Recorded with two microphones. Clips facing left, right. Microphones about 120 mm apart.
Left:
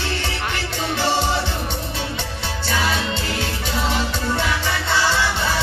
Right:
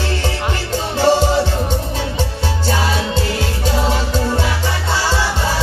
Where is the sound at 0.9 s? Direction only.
40° right (ahead or behind).